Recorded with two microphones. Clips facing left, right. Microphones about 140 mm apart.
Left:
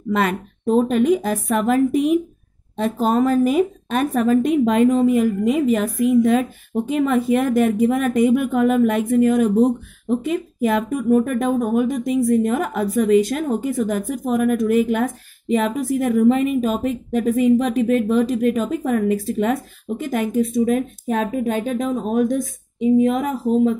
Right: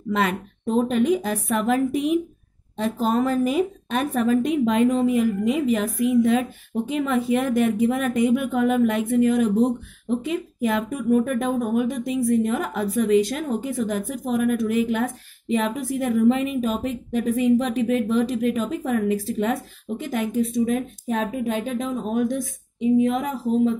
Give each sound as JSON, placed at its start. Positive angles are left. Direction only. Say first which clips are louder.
{"t": 0.1, "sound": "speech", "louder": "left 3 dB", "side_deg": 45}